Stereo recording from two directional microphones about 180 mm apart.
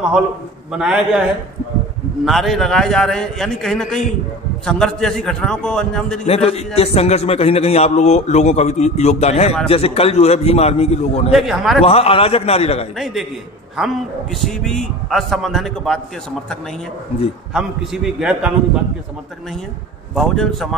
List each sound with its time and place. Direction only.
0.7 s a man's voice: 5° right (ahead or behind)
2.2 s a man's voice: centre (ahead or behind)
6.2 s a man's voice: 35° left (ahead or behind)
11.3 s a man's voice: centre (ahead or behind)
11.8 s a man's voice: 30° left (ahead or behind)
12.9 s a man's voice: centre (ahead or behind)
14.4 s a man's voice: centre (ahead or behind)
17.6 s a man's voice: 5° right (ahead or behind)
20.2 s a man's voice: centre (ahead or behind)